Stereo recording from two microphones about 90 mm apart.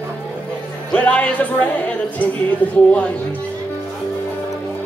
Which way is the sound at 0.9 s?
15° left (ahead or behind).